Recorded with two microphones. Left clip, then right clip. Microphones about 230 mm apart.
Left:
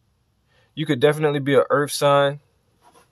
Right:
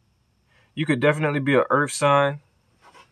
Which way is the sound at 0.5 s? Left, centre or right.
Left.